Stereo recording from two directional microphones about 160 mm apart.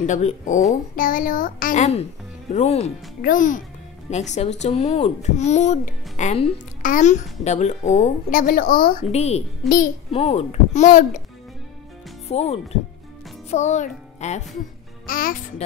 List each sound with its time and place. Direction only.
0.0 s a child's voice: 50° left (ahead or behind)
0.9 s a woman's voice: 60° left (ahead or behind); by 2.9 s 40° left (ahead or behind)
3.2 s a woman's voice: 55° left (ahead or behind)
9.1 s a child's voice: 45° left (ahead or behind)
12.3 s a child's voice: 40° left (ahead or behind)
15.0 s a woman's voice: 60° left (ahead or behind)